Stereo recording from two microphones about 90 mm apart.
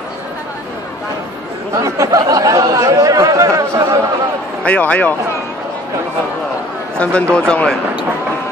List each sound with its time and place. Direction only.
1.8 s speech: 40° right (ahead or behind)
4.6 s speech: 15° left (ahead or behind)
7.0 s speech: 15° left (ahead or behind)